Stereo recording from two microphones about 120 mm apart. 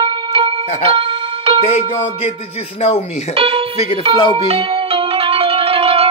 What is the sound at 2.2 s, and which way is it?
Speech, 55° left (ahead or behind).